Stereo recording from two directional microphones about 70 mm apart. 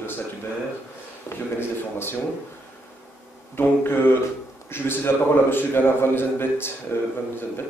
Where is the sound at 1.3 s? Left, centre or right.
Left.